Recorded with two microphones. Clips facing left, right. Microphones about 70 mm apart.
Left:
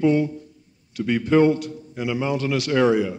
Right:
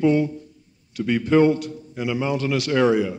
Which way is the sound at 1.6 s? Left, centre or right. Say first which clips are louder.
Even; left.